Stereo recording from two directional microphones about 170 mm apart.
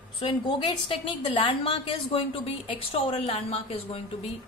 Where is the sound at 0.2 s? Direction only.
30° left (ahead or behind).